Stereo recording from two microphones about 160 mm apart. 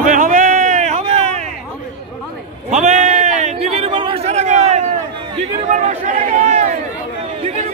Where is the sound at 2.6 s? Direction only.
50° right (ahead or behind).